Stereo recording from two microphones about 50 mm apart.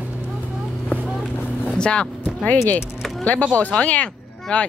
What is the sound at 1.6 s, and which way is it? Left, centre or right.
Vehicle, centre.